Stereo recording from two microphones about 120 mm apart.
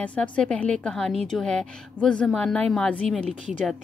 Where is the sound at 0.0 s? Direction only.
10° left (ahead or behind).